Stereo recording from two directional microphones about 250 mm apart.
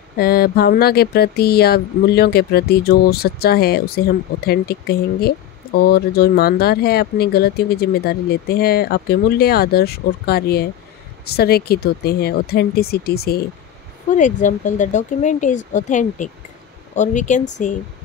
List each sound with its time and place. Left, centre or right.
0.2 s speech: left